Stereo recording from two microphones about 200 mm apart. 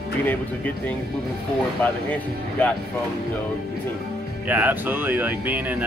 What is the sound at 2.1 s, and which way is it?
Speech, 10° left (ahead or behind).